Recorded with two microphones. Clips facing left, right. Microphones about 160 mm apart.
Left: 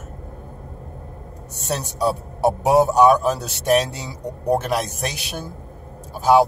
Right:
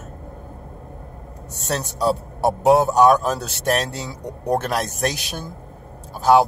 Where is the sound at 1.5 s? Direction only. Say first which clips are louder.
Even; 10° left (ahead or behind).